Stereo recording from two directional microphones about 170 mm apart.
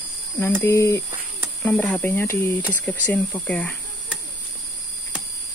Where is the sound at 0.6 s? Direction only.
15° left (ahead or behind).